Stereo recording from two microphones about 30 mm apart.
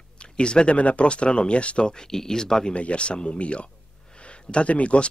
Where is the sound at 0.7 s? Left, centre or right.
Left.